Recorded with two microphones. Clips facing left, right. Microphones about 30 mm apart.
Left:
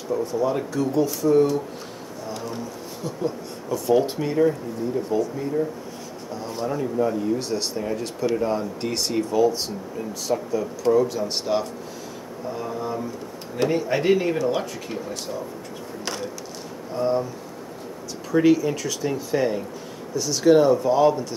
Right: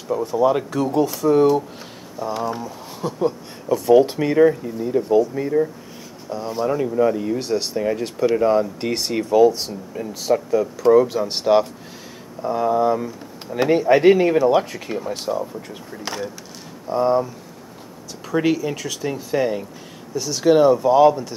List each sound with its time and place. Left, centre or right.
0.1 s speech: centre
0.4 s speech: right
3.0 s speech: right
6.3 s speech: centre
6.8 s speech: right
7.4 s speech: centre
10.9 s speech: right
18.3 s speech: centre